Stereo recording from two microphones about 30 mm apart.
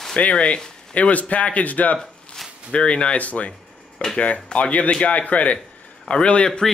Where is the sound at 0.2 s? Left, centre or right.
Left.